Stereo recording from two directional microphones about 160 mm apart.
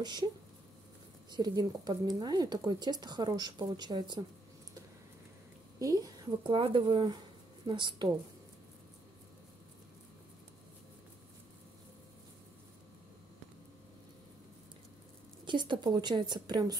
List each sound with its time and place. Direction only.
1.3 s speech: 25° right (ahead or behind)
5.8 s a woman's voice: 20° right (ahead or behind)
15.4 s speech: 30° right (ahead or behind)